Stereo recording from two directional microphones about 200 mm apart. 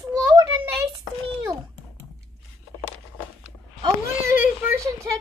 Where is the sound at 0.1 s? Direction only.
15° right (ahead or behind).